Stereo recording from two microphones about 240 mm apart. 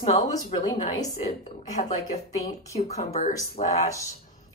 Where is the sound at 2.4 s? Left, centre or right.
Left.